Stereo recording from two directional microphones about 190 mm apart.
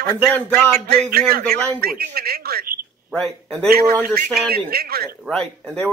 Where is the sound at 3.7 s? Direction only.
50° right (ahead or behind).